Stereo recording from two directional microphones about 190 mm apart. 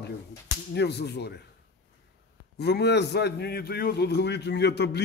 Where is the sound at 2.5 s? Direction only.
60° left (ahead or behind).